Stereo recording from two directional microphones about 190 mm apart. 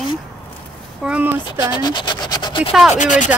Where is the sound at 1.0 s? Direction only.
10° right (ahead or behind).